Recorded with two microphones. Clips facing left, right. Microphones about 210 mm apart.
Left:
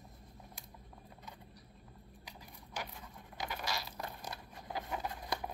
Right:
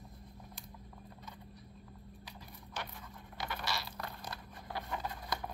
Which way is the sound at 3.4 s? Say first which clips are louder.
Even; 15° left (ahead or behind).